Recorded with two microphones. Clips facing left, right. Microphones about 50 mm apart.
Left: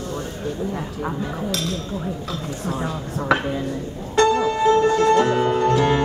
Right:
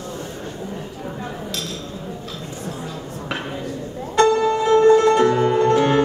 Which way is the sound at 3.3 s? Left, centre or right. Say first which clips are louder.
Left 9 dB; left.